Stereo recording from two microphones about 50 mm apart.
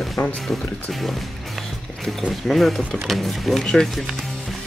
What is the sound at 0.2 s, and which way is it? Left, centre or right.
Speech, left.